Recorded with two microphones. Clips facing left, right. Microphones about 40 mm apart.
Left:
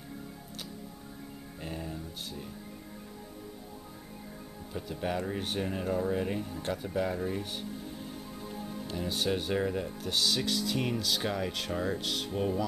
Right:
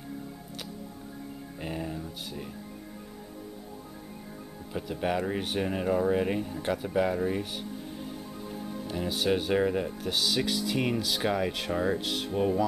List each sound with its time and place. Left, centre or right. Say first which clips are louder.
1.6 s music: right 4 dB; centre
4.7 s speech: right 4 dB; centre
8.5 s music: right 2 dB; centre
8.8 s speech: right 4 dB; centre